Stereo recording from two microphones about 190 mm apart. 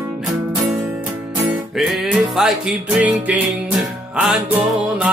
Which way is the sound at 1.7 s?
Centre (ahead or behind).